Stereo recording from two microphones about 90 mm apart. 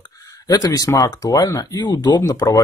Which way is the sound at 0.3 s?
45° left (ahead or behind).